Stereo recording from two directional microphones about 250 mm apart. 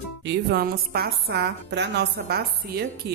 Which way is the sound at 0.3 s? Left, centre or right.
Right.